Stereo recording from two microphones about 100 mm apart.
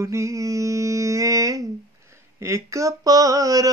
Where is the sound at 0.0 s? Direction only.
30° right (ahead or behind).